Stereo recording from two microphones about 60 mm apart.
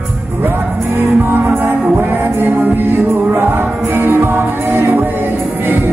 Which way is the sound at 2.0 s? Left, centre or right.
Right.